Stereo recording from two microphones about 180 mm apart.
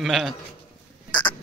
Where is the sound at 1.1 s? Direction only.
25° left (ahead or behind).